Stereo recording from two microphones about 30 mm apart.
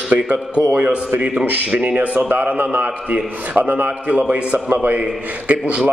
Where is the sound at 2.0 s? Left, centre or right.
Right.